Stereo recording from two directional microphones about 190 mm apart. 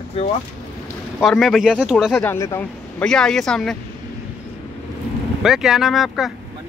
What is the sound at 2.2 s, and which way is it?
Speech, 15° left (ahead or behind).